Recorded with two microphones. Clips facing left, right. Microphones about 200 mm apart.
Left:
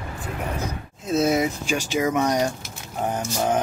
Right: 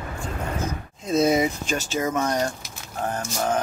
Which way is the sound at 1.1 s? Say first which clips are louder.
Right 1 dB; 5° left (ahead or behind).